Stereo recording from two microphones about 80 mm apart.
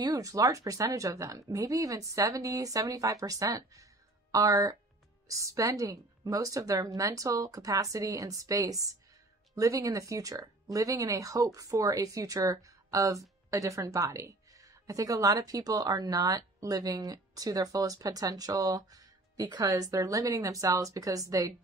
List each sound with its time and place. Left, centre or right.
0.0 s speech: right